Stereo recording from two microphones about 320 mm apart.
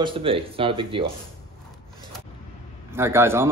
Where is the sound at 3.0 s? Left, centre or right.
Centre.